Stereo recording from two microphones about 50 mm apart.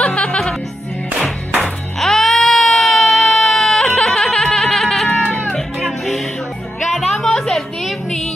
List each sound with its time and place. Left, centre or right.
0.0 s music: left
2.0 s baby cry: centre
5.8 s music: centre
7.2 s a sound: centre